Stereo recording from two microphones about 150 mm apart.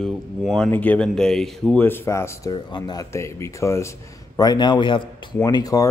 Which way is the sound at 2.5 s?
30° left (ahead or behind).